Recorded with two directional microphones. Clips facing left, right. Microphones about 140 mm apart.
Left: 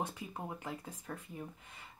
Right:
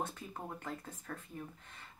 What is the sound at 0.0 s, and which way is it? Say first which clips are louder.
Speech: left 1 dB; 10° left (ahead or behind).